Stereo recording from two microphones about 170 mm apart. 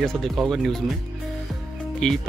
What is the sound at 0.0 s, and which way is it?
Speech, centre (ahead or behind).